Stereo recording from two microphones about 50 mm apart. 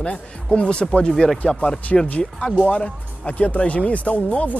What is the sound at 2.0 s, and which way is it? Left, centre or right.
Speech, left.